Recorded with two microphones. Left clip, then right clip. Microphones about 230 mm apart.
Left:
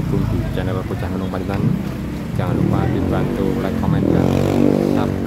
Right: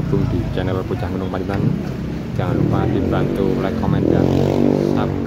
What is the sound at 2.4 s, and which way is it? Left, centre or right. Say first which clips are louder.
Speech: right 1 dB; centre.